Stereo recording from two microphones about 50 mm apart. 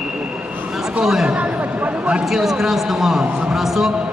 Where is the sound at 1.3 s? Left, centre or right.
Right.